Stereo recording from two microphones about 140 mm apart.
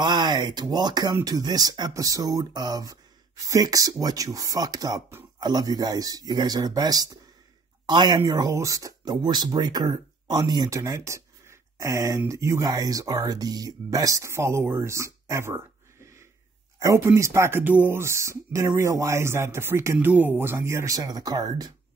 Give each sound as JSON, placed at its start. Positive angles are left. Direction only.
{"t": 0.0, "sound": "speech", "side_deg": -30}
{"t": 16.8, "sound": "speech", "side_deg": -20}